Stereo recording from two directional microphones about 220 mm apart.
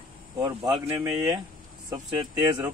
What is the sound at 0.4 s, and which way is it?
Speech, 15° right (ahead or behind).